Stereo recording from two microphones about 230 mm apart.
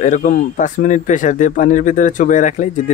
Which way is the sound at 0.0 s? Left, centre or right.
Left.